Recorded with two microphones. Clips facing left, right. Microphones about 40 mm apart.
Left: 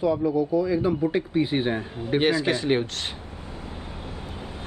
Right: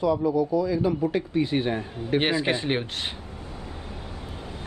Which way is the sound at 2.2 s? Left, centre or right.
Right.